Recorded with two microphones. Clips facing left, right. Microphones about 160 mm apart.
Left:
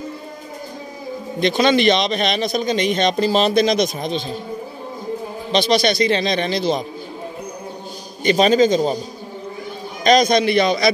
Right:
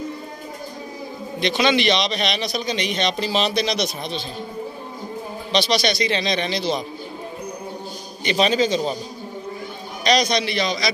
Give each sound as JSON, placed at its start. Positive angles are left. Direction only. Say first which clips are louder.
{"t": 1.4, "sound": "a man's voice", "louder": "left 4 dB", "side_deg": 45}
{"t": 5.6, "sound": "a man's voice", "louder": "left 4 dB", "side_deg": 50}
{"t": 8.2, "sound": "a man's voice", "louder": "left 5 dB", "side_deg": 45}
{"t": 10.0, "sound": "a man's voice", "louder": "left 6 dB", "side_deg": 50}